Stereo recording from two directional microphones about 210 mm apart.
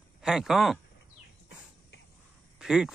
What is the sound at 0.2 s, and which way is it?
Speech, centre (ahead or behind).